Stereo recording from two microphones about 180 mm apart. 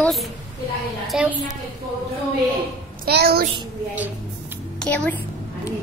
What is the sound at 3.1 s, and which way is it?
Speech, 60° right (ahead or behind).